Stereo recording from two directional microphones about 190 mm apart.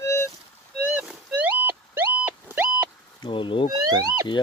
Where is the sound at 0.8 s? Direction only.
10° right (ahead or behind).